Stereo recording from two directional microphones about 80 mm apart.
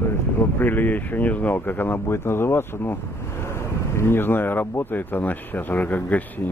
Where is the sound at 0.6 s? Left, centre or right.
Left.